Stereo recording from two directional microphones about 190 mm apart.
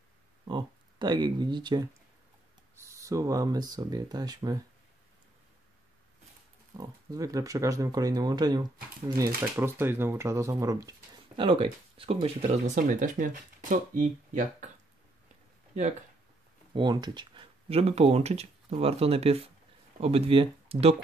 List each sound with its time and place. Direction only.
0.5 s speech: 25° right (ahead or behind)
6.8 s speech: 20° right (ahead or behind)
11.4 s speech: 30° right (ahead or behind); by 14.7 s 45° right (ahead or behind)
16.7 s speech: 20° right (ahead or behind)